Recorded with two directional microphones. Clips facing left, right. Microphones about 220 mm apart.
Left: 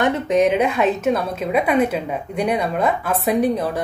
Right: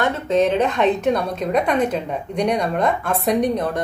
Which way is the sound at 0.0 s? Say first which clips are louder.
Left 1 dB; 15° left (ahead or behind).